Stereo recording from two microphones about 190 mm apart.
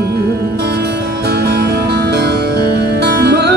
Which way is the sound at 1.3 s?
60° right (ahead or behind).